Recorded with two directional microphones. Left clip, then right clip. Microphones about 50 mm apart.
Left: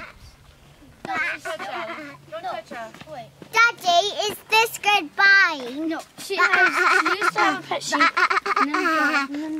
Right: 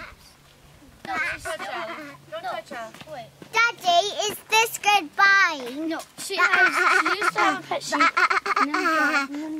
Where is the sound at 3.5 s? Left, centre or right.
Left.